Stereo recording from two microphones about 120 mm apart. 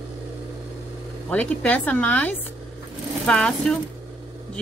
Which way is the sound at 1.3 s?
10° left (ahead or behind).